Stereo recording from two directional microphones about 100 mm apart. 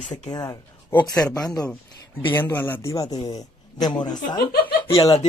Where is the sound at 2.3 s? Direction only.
25° left (ahead or behind).